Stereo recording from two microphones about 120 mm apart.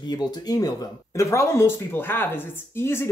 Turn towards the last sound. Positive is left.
turn(degrees=20)  # may be behind; listen again after turning